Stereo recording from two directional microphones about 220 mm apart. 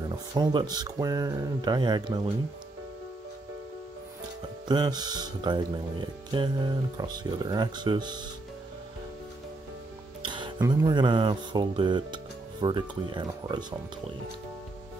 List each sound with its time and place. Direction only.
0.1 s speech: 20° right (ahead or behind)
4.6 s speech: 20° right (ahead or behind)
10.2 s speech: 20° right (ahead or behind)